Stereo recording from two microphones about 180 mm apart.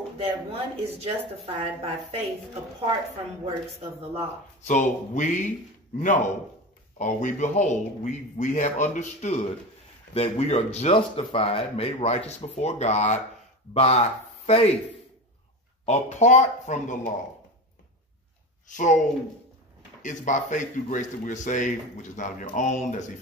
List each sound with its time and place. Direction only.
0.2 s a woman's voice: 35° right (ahead or behind)
4.6 s speech: 40° left (ahead or behind)
15.8 s speech: 40° left (ahead or behind)
18.7 s speech: 45° left (ahead or behind)
20.0 s speech: 45° left (ahead or behind)